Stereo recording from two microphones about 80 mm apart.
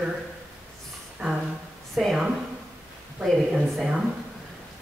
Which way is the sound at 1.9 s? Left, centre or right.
Centre.